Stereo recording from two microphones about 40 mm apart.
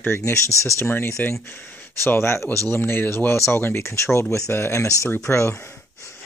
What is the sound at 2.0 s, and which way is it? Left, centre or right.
Speech, left.